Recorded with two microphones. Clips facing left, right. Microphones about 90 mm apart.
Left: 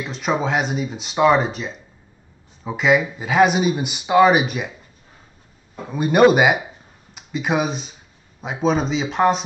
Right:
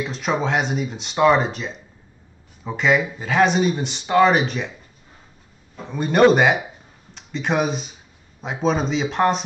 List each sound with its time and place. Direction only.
0.0 s speech: centre (ahead or behind)
5.8 s speech: 5° left (ahead or behind)